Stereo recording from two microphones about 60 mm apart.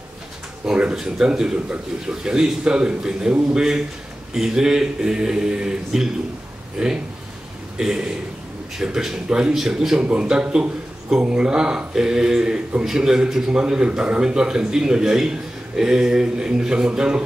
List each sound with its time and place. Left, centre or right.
0.9 s speech: centre